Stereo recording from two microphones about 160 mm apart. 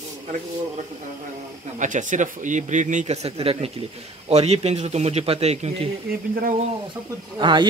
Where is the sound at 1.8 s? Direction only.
50° right (ahead or behind).